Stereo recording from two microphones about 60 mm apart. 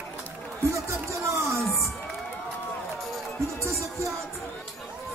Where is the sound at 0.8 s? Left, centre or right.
Right.